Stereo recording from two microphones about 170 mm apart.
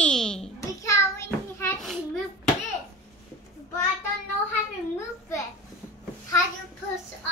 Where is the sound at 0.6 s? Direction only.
15° left (ahead or behind).